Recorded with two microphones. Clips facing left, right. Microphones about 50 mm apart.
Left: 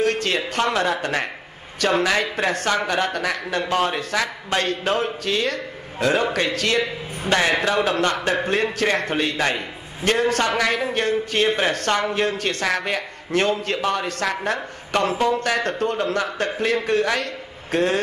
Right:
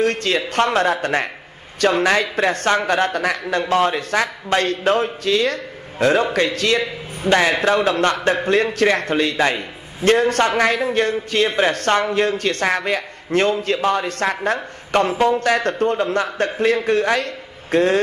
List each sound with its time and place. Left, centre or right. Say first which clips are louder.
0.0 s a man's voice: right 2 dB; right
7.2 s a man's voice: right 4 dB; right
9.4 s a man's voice: right 4 dB; right